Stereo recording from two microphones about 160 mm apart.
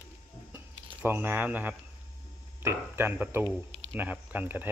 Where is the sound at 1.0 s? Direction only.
15° right (ahead or behind).